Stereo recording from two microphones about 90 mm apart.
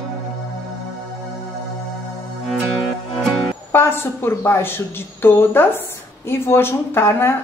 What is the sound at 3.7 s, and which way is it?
A woman's voice, 25° left (ahead or behind).